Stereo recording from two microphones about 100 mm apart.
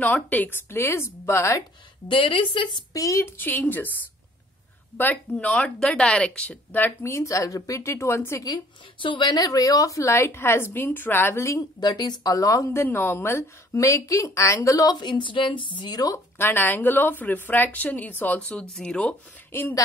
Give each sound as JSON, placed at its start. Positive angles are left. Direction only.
{"t": 0.0, "sound": "speech", "side_deg": 15}
{"t": 2.0, "sound": "a woman's voice", "side_deg": 60}
{"t": 2.9, "sound": "speech", "side_deg": 35}
{"t": 3.3, "sound": "speech", "side_deg": 20}
{"t": 4.9, "sound": "speech", "side_deg": 15}
{"t": 9.0, "sound": "speech", "side_deg": 50}
{"t": 11.8, "sound": "speech", "side_deg": 45}
{"t": 16.3, "sound": "speech", "side_deg": 20}